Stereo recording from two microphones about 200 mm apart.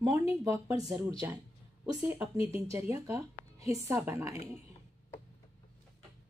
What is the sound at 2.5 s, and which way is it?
A woman's voice, 15° right (ahead or behind).